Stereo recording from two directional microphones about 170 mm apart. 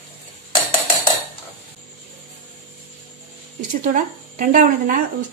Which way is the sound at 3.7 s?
50° right (ahead or behind).